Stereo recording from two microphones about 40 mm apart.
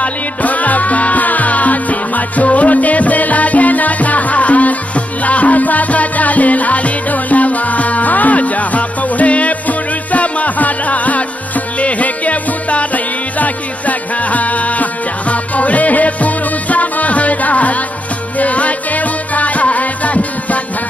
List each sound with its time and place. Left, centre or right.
0.0 s music: left